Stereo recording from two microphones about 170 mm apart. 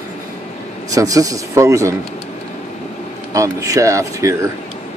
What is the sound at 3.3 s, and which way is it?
Speech, 20° right (ahead or behind).